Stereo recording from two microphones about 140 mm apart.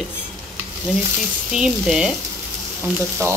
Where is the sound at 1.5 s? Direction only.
5° right (ahead or behind).